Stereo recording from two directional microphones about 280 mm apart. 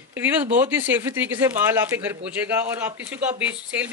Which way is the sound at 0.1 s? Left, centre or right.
Centre.